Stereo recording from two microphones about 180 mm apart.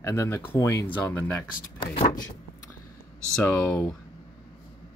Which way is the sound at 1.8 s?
25° left (ahead or behind).